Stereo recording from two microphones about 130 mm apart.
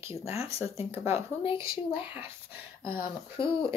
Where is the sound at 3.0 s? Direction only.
40° left (ahead or behind).